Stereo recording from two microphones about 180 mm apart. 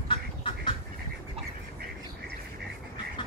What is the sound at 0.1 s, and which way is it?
Duck, 30° left (ahead or behind).